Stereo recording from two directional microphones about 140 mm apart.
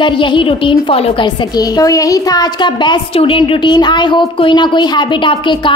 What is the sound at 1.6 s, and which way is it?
Speech, 25° left (ahead or behind).